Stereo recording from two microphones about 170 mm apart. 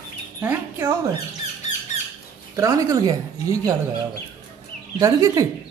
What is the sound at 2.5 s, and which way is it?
Speech, 20° right (ahead or behind).